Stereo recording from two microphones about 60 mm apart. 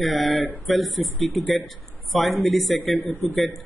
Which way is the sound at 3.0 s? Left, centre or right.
Left.